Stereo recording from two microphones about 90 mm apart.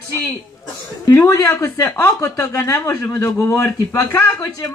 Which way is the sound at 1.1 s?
30° left (ahead or behind).